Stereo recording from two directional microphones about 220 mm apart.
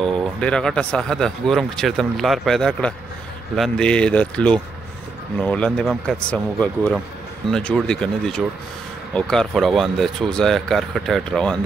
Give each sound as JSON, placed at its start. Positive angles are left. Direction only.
{"t": 0.0, "sound": "speech", "side_deg": 5}